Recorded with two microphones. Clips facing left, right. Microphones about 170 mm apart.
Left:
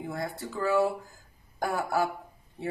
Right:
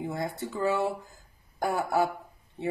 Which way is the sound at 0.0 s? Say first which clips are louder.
Right 2 dB; 20° right (ahead or behind).